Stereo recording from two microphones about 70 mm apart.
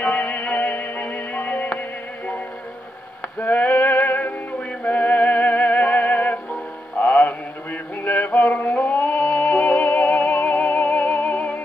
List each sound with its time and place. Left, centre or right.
0.0 s music: left
3.3 s music: left